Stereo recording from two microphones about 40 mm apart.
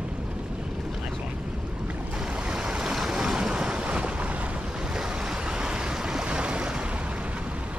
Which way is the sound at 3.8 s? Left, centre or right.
Right.